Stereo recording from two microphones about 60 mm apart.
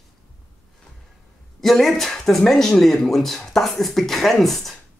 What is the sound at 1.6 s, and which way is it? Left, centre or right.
Speech, centre.